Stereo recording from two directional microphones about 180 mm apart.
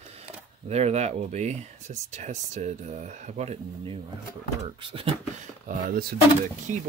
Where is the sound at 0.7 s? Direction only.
35° right (ahead or behind).